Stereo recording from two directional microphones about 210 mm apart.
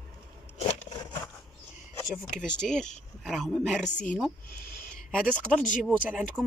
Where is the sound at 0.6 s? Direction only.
30° left (ahead or behind).